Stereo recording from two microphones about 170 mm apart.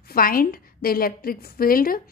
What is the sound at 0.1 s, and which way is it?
A woman's voice, 55° left (ahead or behind).